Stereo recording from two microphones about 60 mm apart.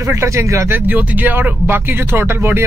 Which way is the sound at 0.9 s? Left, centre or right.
Right.